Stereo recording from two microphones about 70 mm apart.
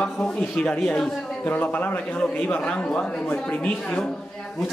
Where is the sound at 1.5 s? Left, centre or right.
Left.